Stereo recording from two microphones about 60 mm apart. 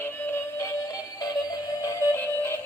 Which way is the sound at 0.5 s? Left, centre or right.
Left.